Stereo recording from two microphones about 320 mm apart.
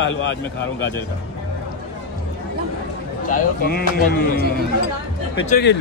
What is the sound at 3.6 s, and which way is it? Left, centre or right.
Speech, left.